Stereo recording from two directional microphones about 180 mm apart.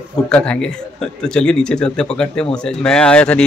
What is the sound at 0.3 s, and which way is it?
Speech, 5° left (ahead or behind).